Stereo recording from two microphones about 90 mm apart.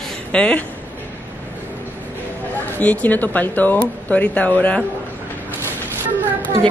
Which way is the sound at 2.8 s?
15° left (ahead or behind).